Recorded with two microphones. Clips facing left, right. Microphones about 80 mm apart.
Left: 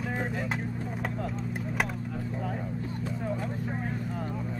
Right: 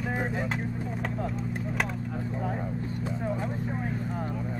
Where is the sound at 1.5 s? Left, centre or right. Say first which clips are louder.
Right 1 dB; centre.